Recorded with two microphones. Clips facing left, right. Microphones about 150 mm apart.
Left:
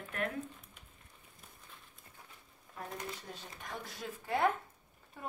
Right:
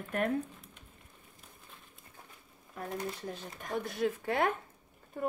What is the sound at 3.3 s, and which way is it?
Speech, 55° right (ahead or behind).